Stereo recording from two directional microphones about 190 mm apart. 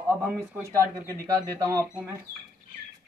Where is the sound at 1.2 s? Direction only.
15° right (ahead or behind).